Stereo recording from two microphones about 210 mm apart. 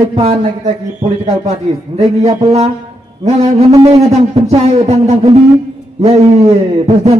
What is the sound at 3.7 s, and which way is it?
A man's voice, 20° right (ahead or behind).